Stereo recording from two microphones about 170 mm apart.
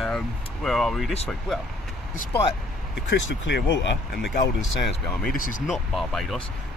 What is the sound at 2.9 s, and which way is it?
Speech, 90° left.